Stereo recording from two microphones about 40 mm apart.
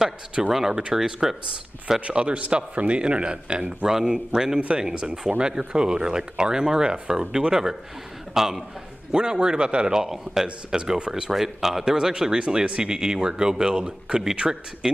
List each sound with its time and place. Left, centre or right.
0.0 s speech: centre
2.0 s speech: right
10.0 s speech: centre
11.3 s speech: centre